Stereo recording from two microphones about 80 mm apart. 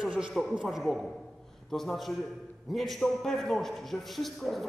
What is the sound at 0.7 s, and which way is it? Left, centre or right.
A man's voice, centre.